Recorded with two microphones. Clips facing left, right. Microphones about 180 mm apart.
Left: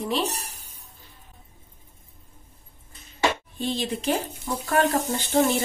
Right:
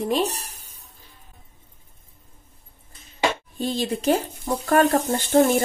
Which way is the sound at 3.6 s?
45° right (ahead or behind).